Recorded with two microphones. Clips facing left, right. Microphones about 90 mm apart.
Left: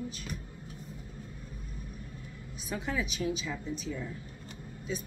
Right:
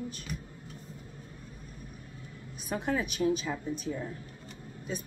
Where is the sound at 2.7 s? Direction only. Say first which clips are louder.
Right 3 dB; 50° right (ahead or behind).